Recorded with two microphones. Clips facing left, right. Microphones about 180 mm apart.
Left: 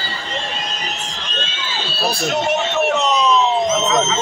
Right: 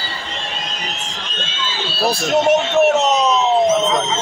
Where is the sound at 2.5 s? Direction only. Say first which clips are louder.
Right 6 dB; 45° right (ahead or behind).